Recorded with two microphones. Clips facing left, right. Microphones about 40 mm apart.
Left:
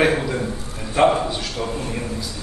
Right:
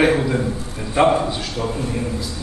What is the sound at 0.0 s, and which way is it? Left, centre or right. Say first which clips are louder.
A man's voice: right 2 dB; centre.